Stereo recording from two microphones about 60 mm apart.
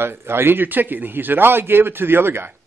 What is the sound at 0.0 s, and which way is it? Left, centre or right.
A man's voice, right.